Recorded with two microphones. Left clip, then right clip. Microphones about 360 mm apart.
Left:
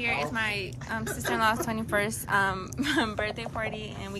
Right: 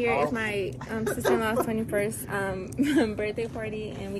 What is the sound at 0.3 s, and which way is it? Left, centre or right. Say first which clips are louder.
A woman's voice: right 1 dB; centre.